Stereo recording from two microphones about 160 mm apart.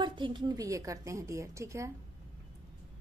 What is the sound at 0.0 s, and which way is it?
A woman's voice, 30° right (ahead or behind).